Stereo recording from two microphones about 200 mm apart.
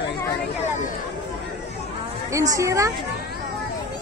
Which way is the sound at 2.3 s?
15° right (ahead or behind).